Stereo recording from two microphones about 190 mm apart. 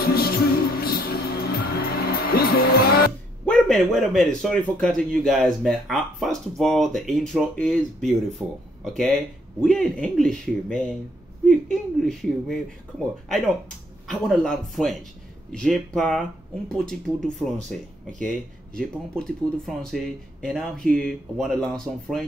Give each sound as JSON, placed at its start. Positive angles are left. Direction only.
{"t": 0.0, "sound": "music", "side_deg": 55}
{"t": 3.4, "sound": "a man's voice", "side_deg": 5}
{"t": 18.8, "sound": "a man's voice", "side_deg": 5}